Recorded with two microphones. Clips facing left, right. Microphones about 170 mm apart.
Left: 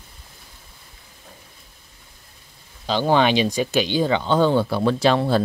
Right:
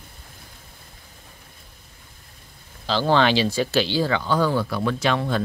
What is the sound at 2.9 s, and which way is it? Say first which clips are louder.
Speech: left 1 dB; 15° left (ahead or behind).